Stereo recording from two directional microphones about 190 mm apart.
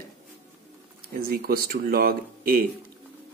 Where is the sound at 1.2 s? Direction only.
50° right (ahead or behind).